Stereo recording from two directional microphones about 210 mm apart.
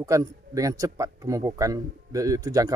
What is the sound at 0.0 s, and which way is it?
Speech, 15° right (ahead or behind).